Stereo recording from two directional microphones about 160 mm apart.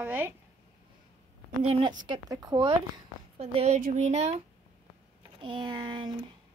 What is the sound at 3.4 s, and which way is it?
Speech, 40° right (ahead or behind).